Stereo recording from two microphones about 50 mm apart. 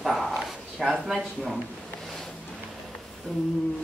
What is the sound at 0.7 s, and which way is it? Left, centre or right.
Speech, centre.